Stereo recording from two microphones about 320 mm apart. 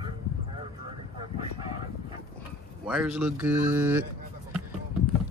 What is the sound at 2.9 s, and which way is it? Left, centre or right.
Speech, centre.